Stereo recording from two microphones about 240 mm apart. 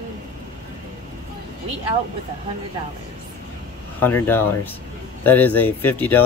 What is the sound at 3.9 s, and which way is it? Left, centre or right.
Speech, centre.